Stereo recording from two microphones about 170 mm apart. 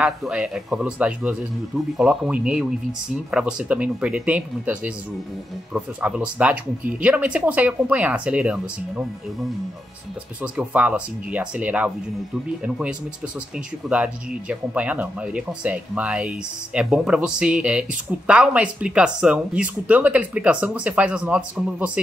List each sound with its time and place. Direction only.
0.0 s a man's voice: 5° right (ahead or behind)
10.4 s a man's voice: 5° right (ahead or behind)